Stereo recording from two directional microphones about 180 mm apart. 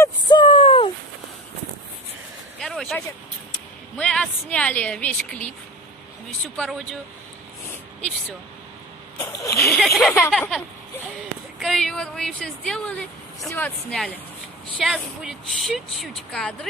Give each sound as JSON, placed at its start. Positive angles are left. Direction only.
{"t": 0.0, "sound": "a sound", "side_deg": 25}
{"t": 2.6, "sound": "vehicle", "side_deg": 0}
{"t": 3.9, "sound": "speech", "side_deg": 5}
{"t": 6.5, "sound": "speech", "side_deg": 5}
{"t": 9.2, "sound": "speech", "side_deg": 15}
{"t": 9.7, "sound": "speech", "side_deg": 0}
{"t": 11.6, "sound": "speech", "side_deg": 0}